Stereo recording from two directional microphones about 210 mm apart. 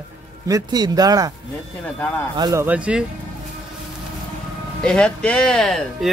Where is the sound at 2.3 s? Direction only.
15° right (ahead or behind).